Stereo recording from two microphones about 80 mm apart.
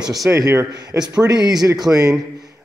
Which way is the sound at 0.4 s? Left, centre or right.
Right.